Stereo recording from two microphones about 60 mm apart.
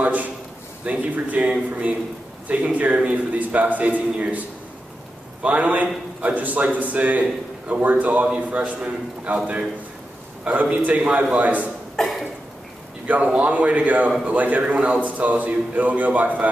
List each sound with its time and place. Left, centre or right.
0.0 s a sound: right
0.8 s a man's voice: right
10.4 s a man's voice: right
12.0 s cough: centre
13.0 s a man's voice: right